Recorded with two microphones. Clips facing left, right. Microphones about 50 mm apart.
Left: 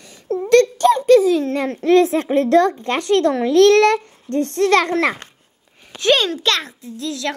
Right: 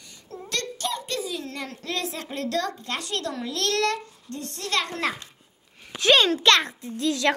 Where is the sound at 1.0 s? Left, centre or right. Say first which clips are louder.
Left 19 dB; left.